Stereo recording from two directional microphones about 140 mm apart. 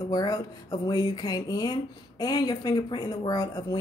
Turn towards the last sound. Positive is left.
turn(degrees=25)  # may be behind; listen again after turning